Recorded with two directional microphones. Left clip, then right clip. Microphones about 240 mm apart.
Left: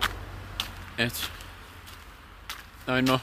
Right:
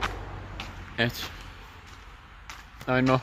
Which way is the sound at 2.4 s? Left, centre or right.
Centre.